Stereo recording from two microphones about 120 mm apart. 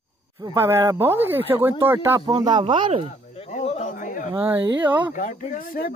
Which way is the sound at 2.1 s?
35° right (ahead or behind).